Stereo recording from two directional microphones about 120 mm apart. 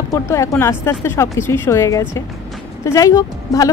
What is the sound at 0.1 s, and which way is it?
A woman's voice, 25° left (ahead or behind).